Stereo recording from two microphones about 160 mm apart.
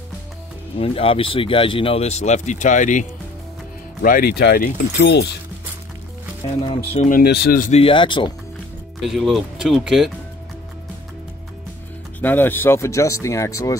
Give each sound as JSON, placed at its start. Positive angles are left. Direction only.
{"t": 0.7, "sound": "speech", "side_deg": 35}
{"t": 4.0, "sound": "speech", "side_deg": 65}
{"t": 6.9, "sound": "speech", "side_deg": 50}
{"t": 7.7, "sound": "speech", "side_deg": 35}
{"t": 9.0, "sound": "speech", "side_deg": 0}
{"t": 12.2, "sound": "speech", "side_deg": 10}